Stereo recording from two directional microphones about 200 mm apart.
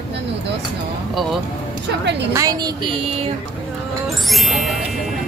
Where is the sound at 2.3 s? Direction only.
20° right (ahead or behind).